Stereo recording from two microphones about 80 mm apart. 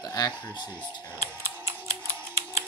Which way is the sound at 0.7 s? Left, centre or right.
Right.